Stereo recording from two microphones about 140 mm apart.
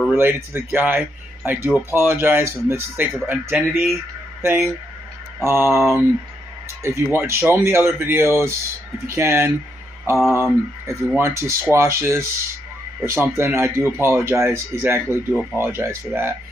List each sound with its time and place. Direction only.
0.1 s speech: 15° right (ahead or behind)